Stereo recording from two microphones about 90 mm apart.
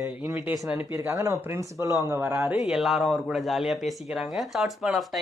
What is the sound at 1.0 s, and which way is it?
Speech, 35° right (ahead or behind).